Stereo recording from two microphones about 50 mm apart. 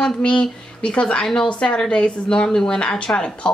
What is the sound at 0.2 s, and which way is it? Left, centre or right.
Speech, centre.